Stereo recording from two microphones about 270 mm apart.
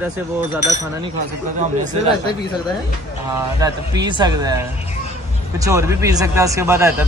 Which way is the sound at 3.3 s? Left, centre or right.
Centre.